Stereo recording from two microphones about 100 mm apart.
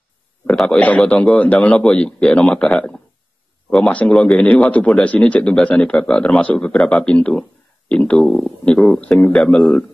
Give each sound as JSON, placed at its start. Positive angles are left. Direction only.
{"t": 0.7, "sound": "speech", "side_deg": 15}